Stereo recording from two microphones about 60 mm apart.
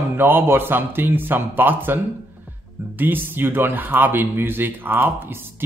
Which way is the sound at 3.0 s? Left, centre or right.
Right.